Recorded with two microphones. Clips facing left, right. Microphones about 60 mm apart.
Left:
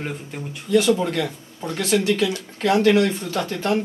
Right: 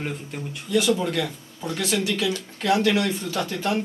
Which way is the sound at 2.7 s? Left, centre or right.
Left.